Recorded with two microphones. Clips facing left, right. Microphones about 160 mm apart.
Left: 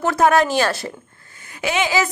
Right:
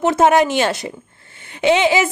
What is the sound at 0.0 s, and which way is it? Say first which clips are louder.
A woman's voice: right 2 dB; 20° right (ahead or behind).